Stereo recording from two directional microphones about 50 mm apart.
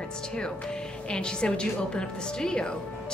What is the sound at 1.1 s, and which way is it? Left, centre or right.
A woman's voice, centre.